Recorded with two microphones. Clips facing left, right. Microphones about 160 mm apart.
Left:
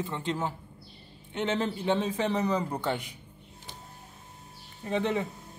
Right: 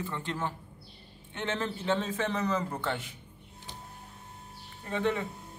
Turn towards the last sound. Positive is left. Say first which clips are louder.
# left 2 dB
turn(degrees=20)  # may be behind; listen again after turning